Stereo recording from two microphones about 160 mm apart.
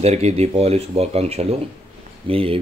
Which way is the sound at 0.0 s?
40° right (ahead or behind).